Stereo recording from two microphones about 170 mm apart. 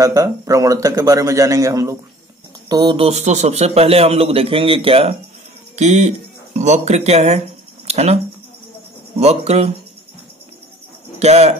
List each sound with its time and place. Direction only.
0.0 s a man's voice: 20° right (ahead or behind)
3.1 s a man's voice: 40° right (ahead or behind)
9.2 s a man's voice: 40° right (ahead or behind)
11.1 s speech: 40° right (ahead or behind)